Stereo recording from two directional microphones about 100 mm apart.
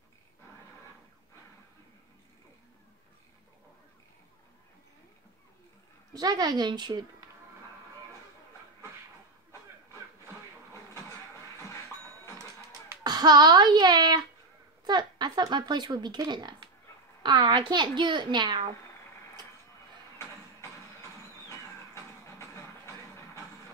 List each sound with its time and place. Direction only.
6.1 s speech: 40° right (ahead or behind)
10.7 s a sound: 25° left (ahead or behind)
13.0 s speech: 40° right (ahead or behind)
21.5 s music: 30° left (ahead or behind)